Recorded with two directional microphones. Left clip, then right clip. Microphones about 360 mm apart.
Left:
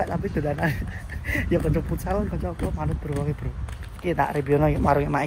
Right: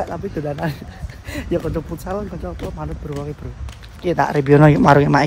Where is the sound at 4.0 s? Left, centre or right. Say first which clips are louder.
Right 6 dB; centre.